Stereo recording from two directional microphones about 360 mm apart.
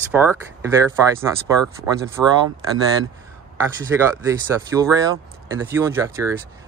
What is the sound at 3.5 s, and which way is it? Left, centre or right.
Speech, centre.